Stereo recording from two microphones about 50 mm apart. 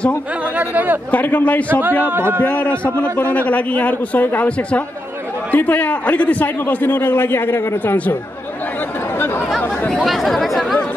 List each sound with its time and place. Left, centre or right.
0.6 s speech: right
1.1 s a man's voice: left
2.0 s a man's voice: right
2.4 s a man's voice: left
10.0 s chatter: centre